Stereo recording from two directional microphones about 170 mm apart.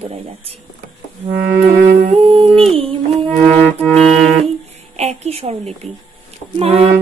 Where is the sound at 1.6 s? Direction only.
55° right (ahead or behind).